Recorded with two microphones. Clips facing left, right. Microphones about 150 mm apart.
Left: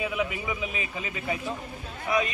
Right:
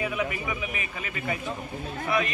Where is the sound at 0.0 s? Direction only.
15° left (ahead or behind).